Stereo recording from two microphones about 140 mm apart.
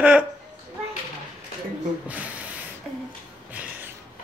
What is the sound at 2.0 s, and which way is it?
Speech, 10° right (ahead or behind).